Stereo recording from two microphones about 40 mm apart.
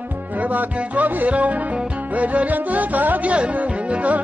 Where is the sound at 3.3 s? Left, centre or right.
Right.